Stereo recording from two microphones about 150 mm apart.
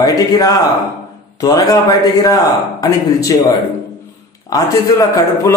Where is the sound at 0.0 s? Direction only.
25° left (ahead or behind).